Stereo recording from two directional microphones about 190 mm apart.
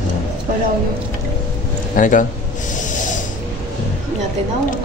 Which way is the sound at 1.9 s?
45° left (ahead or behind).